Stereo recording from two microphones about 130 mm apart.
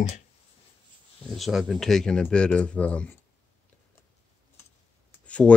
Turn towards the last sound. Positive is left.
turn(degrees=10)  # may be behind; listen again after turning